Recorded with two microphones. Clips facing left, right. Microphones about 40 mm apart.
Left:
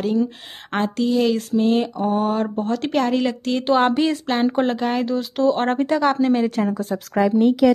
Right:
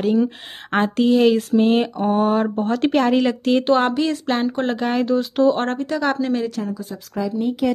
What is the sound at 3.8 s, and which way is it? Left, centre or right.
Speech, centre.